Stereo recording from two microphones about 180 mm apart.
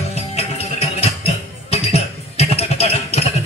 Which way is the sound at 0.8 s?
35° left (ahead or behind).